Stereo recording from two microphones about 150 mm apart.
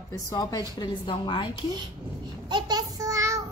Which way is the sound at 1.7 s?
30° right (ahead or behind).